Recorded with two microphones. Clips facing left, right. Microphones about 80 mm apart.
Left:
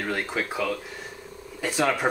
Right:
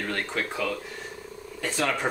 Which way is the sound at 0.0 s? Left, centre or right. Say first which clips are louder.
Left 2 dB; centre.